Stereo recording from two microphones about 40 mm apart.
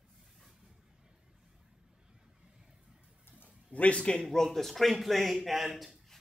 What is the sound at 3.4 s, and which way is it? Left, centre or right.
Speech, left.